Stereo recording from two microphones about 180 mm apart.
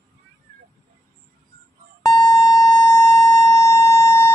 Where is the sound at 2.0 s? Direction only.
20° left (ahead or behind).